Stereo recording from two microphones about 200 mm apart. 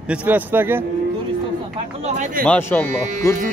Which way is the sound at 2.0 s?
35° right (ahead or behind).